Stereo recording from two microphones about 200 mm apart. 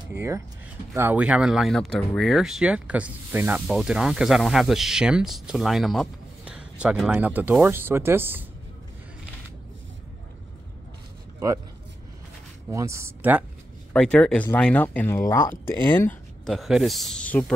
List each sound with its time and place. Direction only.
0.1 s speech: 15° right (ahead or behind)
11.3 s speech: 15° right (ahead or behind)
12.6 s speech: 15° right (ahead or behind)
13.9 s speech: 5° left (ahead or behind)